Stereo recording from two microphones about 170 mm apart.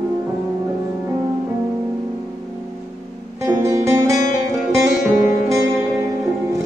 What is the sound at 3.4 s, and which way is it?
Music, 15° right (ahead or behind).